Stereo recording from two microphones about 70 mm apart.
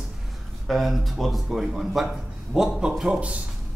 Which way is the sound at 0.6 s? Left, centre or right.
Centre.